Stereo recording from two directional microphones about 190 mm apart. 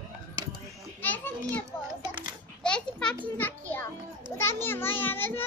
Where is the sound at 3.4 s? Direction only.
10° left (ahead or behind).